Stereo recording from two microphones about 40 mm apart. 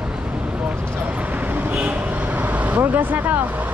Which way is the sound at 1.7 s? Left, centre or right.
Right.